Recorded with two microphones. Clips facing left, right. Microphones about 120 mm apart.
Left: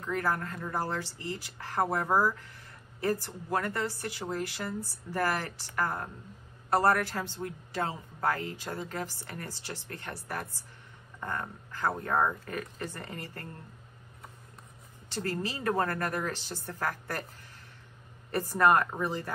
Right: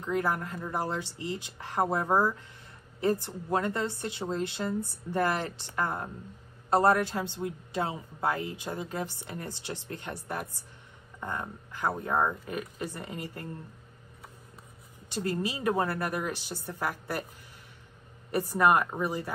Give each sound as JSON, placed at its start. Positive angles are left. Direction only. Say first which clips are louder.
{"t": 0.0, "sound": "a woman's voice", "louder": "right 2 dB", "side_deg": -20}
{"t": 15.0, "sound": "a woman's voice", "louder": "right 2 dB", "side_deg": -15}
{"t": 18.3, "sound": "a woman's voice", "louder": "even", "side_deg": -15}